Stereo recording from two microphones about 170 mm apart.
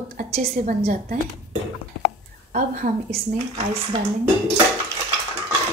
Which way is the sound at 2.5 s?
50° right (ahead or behind).